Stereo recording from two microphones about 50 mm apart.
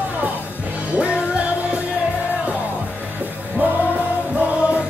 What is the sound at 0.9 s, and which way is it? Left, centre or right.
Music, right.